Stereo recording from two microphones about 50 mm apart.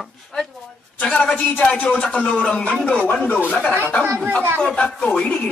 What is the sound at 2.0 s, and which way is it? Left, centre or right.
Speech, left.